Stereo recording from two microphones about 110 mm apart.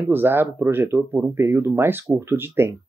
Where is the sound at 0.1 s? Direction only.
20° right (ahead or behind).